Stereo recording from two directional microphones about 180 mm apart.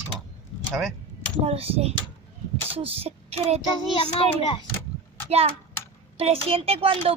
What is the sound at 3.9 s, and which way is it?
Speech, 25° left (ahead or behind).